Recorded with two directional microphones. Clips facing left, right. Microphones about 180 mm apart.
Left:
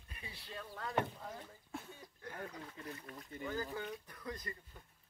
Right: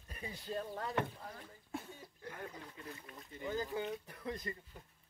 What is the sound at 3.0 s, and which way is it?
Speech, 20° right (ahead or behind).